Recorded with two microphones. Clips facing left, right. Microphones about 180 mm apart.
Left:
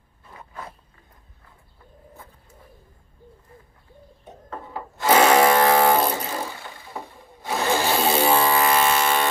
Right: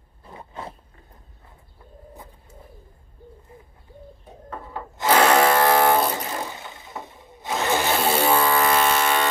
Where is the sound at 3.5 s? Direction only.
15° right (ahead or behind).